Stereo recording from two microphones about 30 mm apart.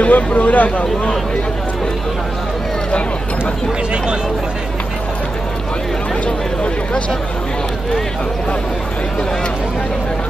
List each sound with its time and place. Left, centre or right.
0.0 s speech: left